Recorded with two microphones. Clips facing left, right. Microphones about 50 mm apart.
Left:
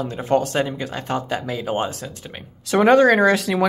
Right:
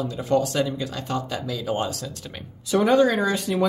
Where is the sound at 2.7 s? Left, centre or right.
Left.